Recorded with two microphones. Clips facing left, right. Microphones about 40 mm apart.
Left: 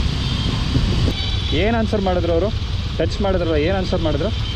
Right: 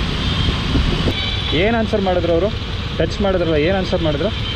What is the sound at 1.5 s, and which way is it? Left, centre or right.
Speech, right.